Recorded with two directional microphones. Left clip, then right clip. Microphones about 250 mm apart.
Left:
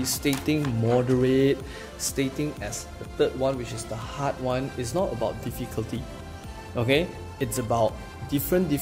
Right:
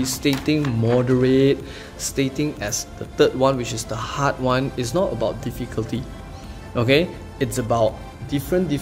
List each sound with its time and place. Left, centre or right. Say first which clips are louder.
0.0 s speech: right 5 dB; centre
8.4 s speech: right 3 dB; centre